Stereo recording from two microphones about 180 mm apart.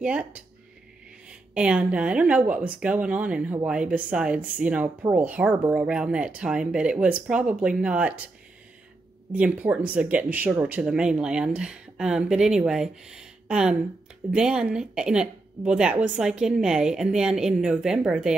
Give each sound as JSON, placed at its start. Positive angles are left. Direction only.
{"t": 0.0, "sound": "speech", "side_deg": -5}
{"t": 9.3, "sound": "speech", "side_deg": -10}